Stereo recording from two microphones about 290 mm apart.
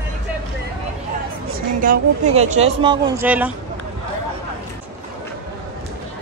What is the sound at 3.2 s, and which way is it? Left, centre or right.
Speech, centre.